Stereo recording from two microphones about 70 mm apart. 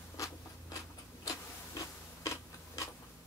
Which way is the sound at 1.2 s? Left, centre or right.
Left.